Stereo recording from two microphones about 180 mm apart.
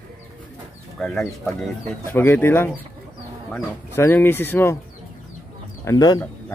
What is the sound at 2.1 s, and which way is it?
Speech, 10° left (ahead or behind).